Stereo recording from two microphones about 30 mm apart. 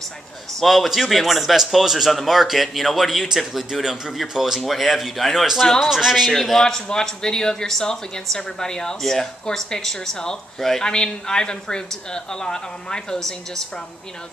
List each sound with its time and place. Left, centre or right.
0.6 s a man's voice: centre
6.5 s speech: centre